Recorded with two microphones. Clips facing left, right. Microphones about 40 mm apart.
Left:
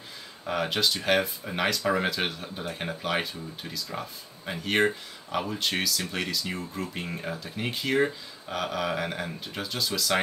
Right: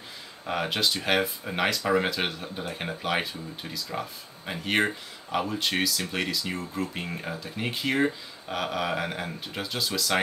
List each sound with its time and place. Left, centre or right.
0.5 s speech: centre